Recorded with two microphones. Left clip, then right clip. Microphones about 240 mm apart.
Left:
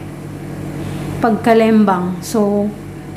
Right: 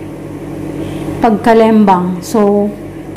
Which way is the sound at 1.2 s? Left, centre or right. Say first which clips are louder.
Right 4 dB; centre.